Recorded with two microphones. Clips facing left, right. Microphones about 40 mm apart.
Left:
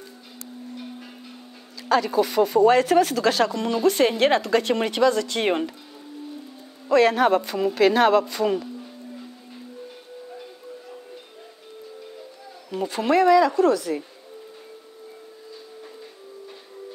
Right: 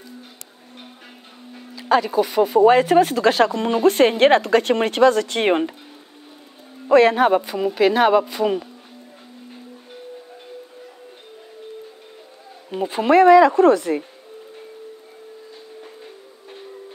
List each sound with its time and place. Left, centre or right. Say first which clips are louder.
1.9 s speech: right 3 dB; centre; by 5.5 s right
6.9 s a man's voice: right 4 dB; right
7.2 s speech: right 2 dB; centre
12.7 s speech: right 5 dB; right